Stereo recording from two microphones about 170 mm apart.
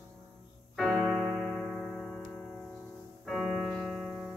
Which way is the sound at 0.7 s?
Centre (ahead or behind).